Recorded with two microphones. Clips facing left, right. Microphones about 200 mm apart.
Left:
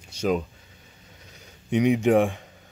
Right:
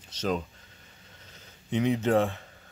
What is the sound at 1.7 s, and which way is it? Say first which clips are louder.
Speech: left 5 dB; 15° left (ahead or behind).